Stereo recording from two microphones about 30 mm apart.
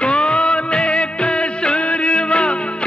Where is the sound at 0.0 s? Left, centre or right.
Left.